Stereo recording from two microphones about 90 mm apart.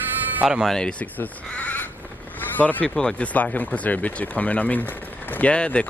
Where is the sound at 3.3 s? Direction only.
15° left (ahead or behind).